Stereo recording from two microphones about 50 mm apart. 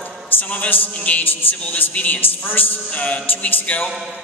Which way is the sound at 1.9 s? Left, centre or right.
Left.